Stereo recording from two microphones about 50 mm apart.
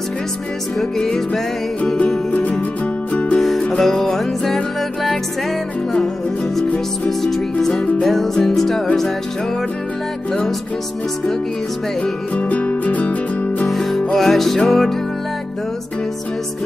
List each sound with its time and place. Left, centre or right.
0.9 s music: centre
3.1 s music: left
3.3 s music: centre
7.1 s music: centre
12.0 s music: left
13.7 s music: centre